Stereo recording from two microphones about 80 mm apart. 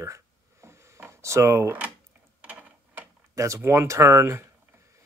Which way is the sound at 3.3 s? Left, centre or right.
Right.